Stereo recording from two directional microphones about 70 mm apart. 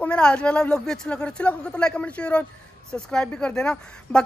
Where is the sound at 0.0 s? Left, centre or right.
Centre.